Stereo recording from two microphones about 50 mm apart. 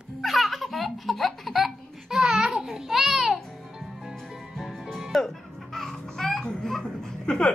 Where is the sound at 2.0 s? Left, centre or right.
Centre.